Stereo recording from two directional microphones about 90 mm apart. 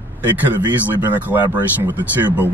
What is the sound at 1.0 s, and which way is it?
Speech, 20° right (ahead or behind).